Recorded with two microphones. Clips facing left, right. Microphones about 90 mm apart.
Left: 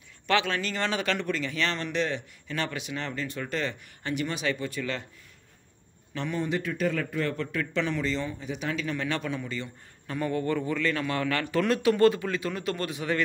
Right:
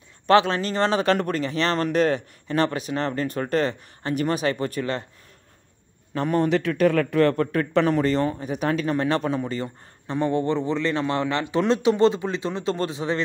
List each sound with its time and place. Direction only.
0.3 s speech: 35° right (ahead or behind)
6.1 s a man's voice: 45° right (ahead or behind)
6.4 s speech: 70° right (ahead or behind); by 13.2 s 25° right (ahead or behind)